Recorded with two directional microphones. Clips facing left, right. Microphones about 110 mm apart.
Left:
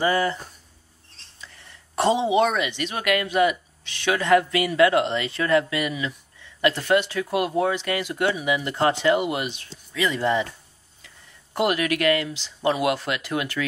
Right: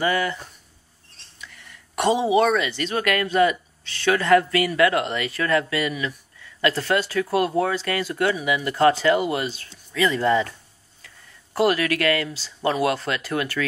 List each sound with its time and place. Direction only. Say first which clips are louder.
0.0 s speech: left 1 dB; 30° left (ahead or behind)
1.4 s speech: right 2 dB; 30° left (ahead or behind)
11.5 s speech: right 2 dB; 20° left (ahead or behind)